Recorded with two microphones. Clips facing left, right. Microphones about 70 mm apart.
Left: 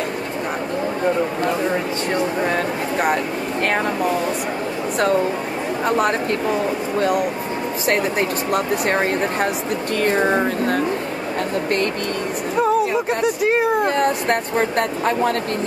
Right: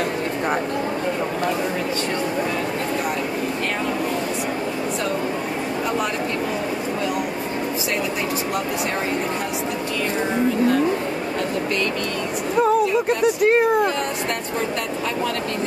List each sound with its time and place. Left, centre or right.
10.0 s speech: left
13.2 s speech: centre
13.8 s speech: left